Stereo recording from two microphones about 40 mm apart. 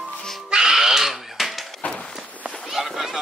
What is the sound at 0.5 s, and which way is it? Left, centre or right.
Music, centre.